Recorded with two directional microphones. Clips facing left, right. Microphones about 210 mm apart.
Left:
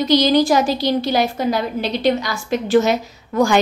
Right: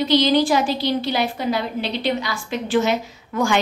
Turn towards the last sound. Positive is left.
turn(degrees=40)  # may be behind; listen again after turning